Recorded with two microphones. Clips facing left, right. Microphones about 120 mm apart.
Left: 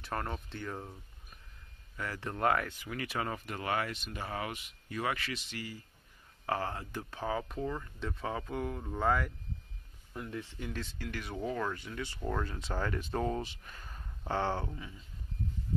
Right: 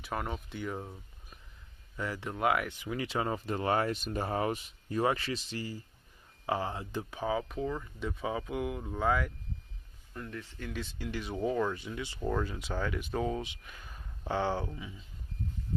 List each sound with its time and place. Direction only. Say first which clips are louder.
0.0 s speech: right 1 dB; 5° right (ahead or behind)
2.0 s speech: right 1 dB; 20° right (ahead or behind)
6.4 s speech: right 2 dB; 15° right (ahead or behind)
10.1 s speech: left 1 dB; 10° left (ahead or behind)
10.9 s speech: right 3 dB; 20° right (ahead or behind)
11.3 s speech: right 5 dB; 10° right (ahead or behind)
12.2 s speech: right 4 dB; 5° right (ahead or behind)